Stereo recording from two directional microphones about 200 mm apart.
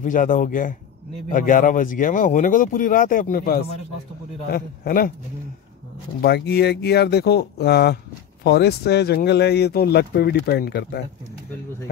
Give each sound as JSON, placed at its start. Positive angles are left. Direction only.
{"t": 0.0, "sound": "a man's voice", "side_deg": 40}
{"t": 6.2, "sound": "speech", "side_deg": 55}